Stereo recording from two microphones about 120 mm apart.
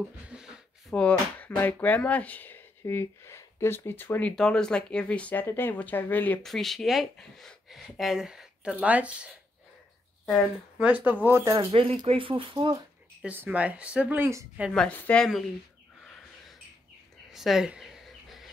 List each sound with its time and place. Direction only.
0.3 s a sound: 5° right (ahead or behind)
0.9 s speech: 10° left (ahead or behind)
4.4 s speech: 5° left (ahead or behind)
6.4 s speech: centre (ahead or behind)
10.8 s speech: 10° right (ahead or behind)
11.5 s speech: 50° right (ahead or behind)
13.2 s speech: 15° right (ahead or behind)
14.8 s speech: 10° left (ahead or behind)
16.0 s bird: centre (ahead or behind)
17.3 s a sound: centre (ahead or behind)